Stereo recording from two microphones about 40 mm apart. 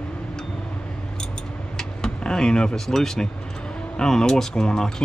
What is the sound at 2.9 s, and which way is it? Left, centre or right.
Speech, centre.